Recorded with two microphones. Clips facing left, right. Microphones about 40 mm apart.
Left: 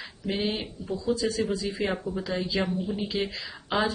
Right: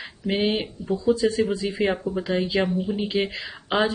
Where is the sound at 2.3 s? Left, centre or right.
Right.